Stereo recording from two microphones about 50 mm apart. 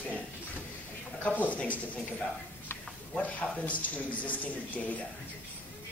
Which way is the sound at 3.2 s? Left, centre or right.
Left.